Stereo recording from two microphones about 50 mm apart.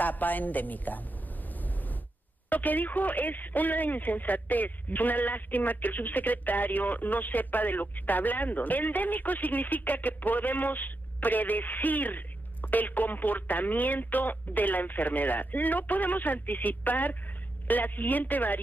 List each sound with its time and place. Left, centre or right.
0.0 s speech: left
1.5 s a sound: left
2.5 s speech: left